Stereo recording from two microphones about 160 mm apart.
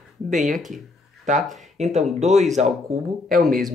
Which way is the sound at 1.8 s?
45° right (ahead or behind).